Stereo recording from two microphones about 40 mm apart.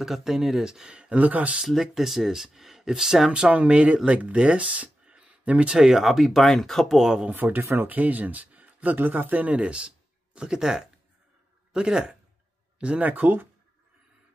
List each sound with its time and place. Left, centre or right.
0.0 s speech: centre; by 1.1 s right
1.1 s speech: right
1.8 s speech: centre
3.3 s speech: right
5.8 s speech: centre
6.0 s speech: centre
7.2 s speech: right
8.0 s speech: right
12.7 s a sound: right
13.0 s speech: right